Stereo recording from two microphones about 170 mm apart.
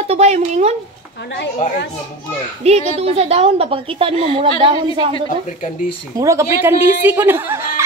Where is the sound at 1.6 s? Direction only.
50° left (ahead or behind).